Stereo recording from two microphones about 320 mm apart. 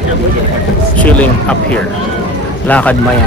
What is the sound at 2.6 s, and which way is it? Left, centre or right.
Speech, centre.